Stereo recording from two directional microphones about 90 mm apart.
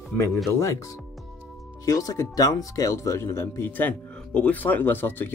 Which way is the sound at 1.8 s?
35° left (ahead or behind).